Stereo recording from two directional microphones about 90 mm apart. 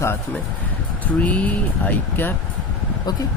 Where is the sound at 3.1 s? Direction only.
50° left (ahead or behind).